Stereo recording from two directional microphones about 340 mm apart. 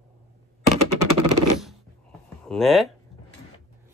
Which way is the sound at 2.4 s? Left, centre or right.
Centre.